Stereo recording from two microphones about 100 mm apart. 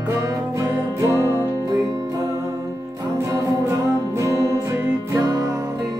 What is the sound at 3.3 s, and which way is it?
Music, 30° right (ahead or behind).